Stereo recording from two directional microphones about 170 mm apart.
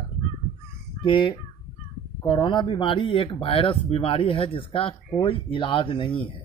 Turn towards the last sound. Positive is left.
turn(degrees=30)  # may be behind; listen again after turning